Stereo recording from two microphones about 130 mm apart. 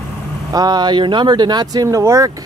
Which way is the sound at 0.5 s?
30° right (ahead or behind).